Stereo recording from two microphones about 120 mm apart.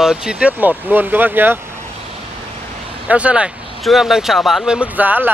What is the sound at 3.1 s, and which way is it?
Speech, 10° right (ahead or behind).